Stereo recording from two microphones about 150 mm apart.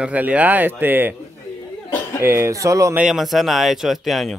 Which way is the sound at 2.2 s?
15° right (ahead or behind).